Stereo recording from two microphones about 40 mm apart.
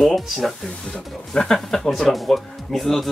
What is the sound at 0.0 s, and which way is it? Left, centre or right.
Speech, centre.